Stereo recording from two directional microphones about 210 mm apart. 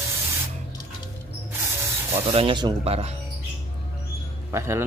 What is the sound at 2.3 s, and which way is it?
Speech, 25° right (ahead or behind).